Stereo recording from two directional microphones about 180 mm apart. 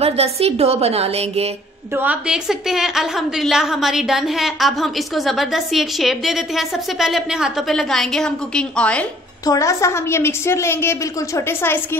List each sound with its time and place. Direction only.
0.0 s a woman's voice: 35° right (ahead or behind)
2.0 s a woman's voice: 5° right (ahead or behind)
9.5 s a woman's voice: 20° left (ahead or behind)